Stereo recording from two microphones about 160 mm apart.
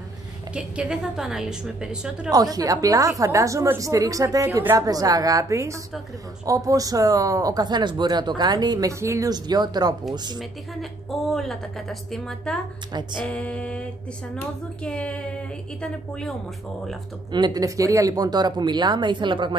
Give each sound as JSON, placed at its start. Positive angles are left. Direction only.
{"t": 0.6, "sound": "a woman's voice", "side_deg": -5}
{"t": 2.3, "sound": "speech", "side_deg": -25}
{"t": 10.7, "sound": "a woman's voice", "side_deg": 0}
{"t": 17.3, "sound": "speech", "side_deg": -25}